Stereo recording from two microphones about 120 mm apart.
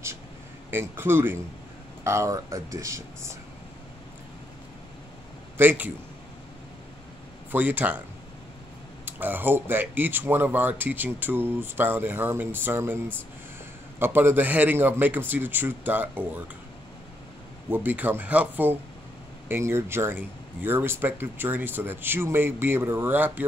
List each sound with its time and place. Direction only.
0.7 s speech: 20° right (ahead or behind)
5.6 s speech: 15° right (ahead or behind)
7.5 s speech: 15° right (ahead or behind)
9.0 s speech: 15° right (ahead or behind)
17.6 s speech: 15° right (ahead or behind)